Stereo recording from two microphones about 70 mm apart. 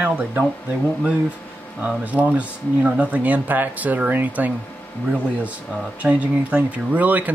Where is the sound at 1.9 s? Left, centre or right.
Right.